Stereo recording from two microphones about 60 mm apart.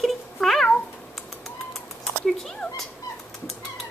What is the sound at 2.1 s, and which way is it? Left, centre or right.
Cat, centre.